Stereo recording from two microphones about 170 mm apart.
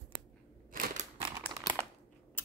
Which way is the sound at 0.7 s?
55° right (ahead or behind).